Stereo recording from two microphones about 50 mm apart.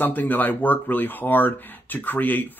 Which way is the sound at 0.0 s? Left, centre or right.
Left.